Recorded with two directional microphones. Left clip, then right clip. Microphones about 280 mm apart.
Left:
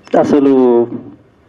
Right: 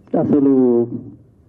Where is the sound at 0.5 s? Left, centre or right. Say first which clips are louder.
Left 5 dB; left.